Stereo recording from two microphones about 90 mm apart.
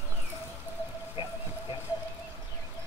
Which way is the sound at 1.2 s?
60° left (ahead or behind).